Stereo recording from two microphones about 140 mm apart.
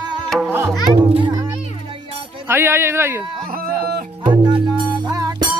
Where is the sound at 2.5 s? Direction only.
15° right (ahead or behind).